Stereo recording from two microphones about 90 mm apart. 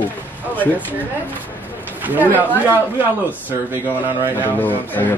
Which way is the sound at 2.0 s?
20° right (ahead or behind).